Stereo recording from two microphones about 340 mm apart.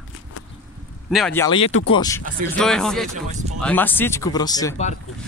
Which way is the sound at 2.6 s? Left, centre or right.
Centre.